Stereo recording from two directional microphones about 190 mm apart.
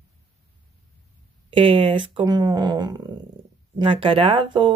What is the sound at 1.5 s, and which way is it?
Speech, 30° right (ahead or behind).